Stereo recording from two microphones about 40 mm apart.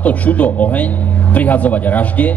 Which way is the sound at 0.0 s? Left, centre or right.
Left.